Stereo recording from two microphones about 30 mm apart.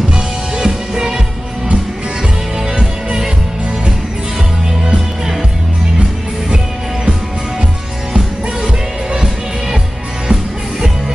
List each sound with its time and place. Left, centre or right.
0.6 s music: centre
2.7 s music: right
4.8 s music: right